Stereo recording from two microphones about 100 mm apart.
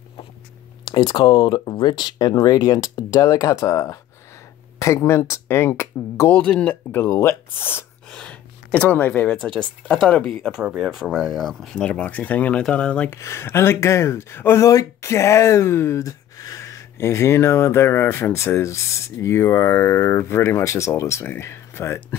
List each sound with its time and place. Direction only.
0.8 s speech: 50° left (ahead or behind); by 6.3 s 25° left (ahead or behind)
6.3 s speech: 10° left (ahead or behind)
8.1 s speech: 10° left (ahead or behind)
13.1 s speech: 25° left (ahead or behind)